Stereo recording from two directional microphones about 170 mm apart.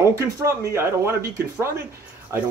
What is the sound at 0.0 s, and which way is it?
Speech, 15° right (ahead or behind).